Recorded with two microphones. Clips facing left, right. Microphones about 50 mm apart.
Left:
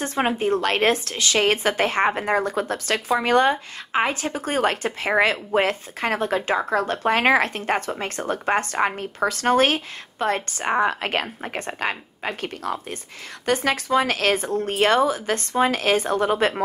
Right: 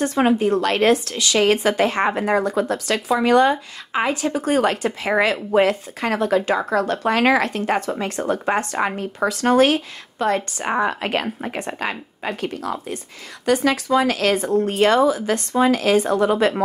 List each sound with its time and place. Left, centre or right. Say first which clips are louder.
0.0 s speech: right 5 dB; left
14.4 s speech: right 6 dB; right
14.8 s speech: right 2 dB; left